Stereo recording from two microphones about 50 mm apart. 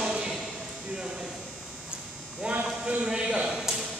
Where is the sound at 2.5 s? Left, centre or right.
Right.